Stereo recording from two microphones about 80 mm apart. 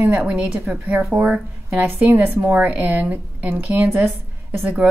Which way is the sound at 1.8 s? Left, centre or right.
Right.